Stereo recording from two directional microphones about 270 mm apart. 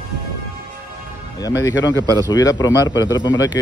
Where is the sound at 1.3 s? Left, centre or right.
Centre.